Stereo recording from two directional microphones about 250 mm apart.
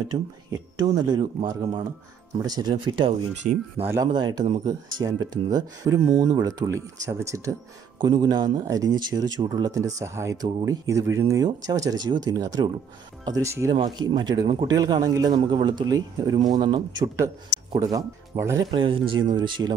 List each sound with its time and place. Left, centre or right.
0.1 s speech: centre
3.4 s speech: right
3.8 s speech: centre